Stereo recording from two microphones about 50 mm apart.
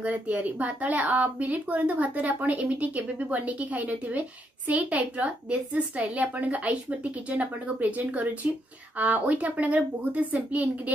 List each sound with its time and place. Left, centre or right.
0.0 s speech: right